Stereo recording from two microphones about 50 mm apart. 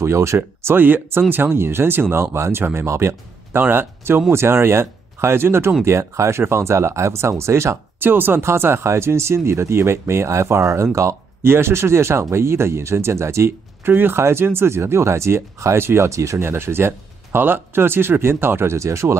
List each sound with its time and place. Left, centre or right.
0.0 s speech: right
0.7 s speech: right
3.5 s speech: right
5.9 s speech: right
8.0 s speech: right
11.4 s speech: right
13.5 s speech: right
14.8 s speech: right
18.8 s speech: right